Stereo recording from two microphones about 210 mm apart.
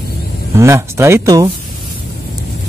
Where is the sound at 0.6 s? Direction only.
15° right (ahead or behind).